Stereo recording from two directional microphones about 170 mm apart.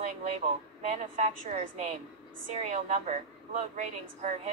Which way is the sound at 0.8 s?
45° right (ahead or behind).